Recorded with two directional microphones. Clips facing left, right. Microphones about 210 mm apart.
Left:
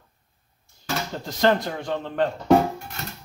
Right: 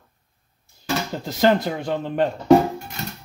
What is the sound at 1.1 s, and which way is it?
Speech, 10° right (ahead or behind).